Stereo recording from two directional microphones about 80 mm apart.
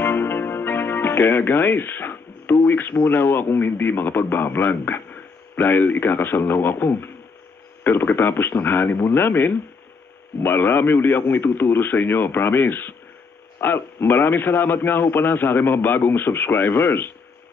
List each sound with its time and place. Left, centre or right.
0.0 s a man's voice: left